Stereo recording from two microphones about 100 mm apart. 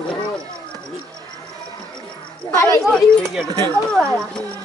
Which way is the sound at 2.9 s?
Centre (ahead or behind).